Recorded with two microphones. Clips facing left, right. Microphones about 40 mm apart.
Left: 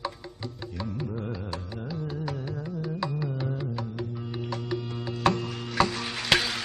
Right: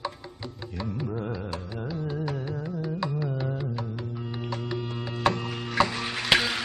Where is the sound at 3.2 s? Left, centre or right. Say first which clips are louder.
Right 1 dB; right.